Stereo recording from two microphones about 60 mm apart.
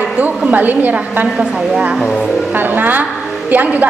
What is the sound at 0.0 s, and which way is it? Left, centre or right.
A woman's voice, centre.